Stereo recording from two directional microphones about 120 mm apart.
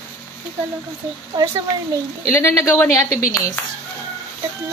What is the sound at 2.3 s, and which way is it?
Speech, 20° left (ahead or behind).